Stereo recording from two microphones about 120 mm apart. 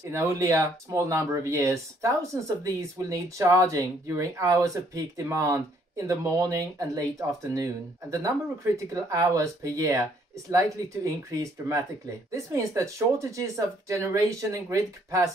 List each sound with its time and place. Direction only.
0.1 s speech: 25° right (ahead or behind)
12.3 s speech: 25° right (ahead or behind)